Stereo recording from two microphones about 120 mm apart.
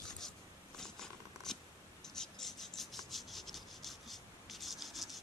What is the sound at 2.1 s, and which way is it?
Rub, centre (ahead or behind).